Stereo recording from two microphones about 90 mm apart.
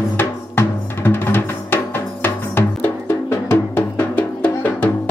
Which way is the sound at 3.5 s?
20° left (ahead or behind).